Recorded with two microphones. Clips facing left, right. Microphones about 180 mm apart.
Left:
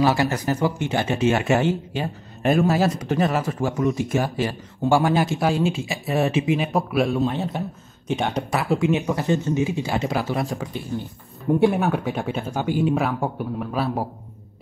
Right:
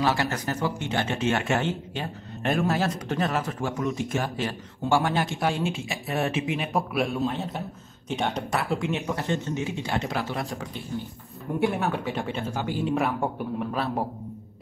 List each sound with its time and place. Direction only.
0.0 s speech: 10° left (ahead or behind)
11.6 s speech: 20° left (ahead or behind)
12.9 s speech: centre (ahead or behind)